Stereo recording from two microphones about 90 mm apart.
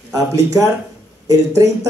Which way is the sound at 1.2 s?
35° right (ahead or behind).